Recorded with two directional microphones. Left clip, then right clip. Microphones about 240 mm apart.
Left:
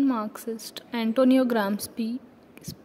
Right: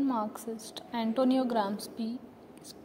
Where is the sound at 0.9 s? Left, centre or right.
Left.